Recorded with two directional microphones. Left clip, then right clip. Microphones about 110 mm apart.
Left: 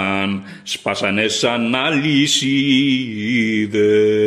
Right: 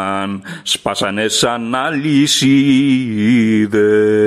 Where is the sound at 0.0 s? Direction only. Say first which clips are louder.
Right 1 dB; 30° right (ahead or behind).